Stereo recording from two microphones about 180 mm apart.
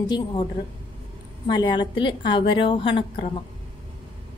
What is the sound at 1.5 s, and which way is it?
A woman's voice, 25° left (ahead or behind).